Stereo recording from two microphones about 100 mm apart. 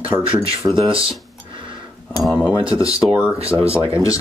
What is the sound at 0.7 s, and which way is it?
Speech, 65° right (ahead or behind).